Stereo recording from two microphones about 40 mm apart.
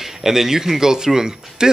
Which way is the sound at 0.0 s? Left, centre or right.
Centre.